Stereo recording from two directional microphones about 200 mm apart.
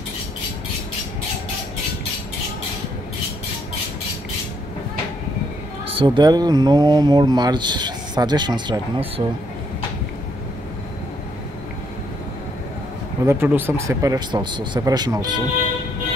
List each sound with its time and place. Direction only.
5.9 s speech: 25° right (ahead or behind)
13.2 s speech: 10° right (ahead or behind)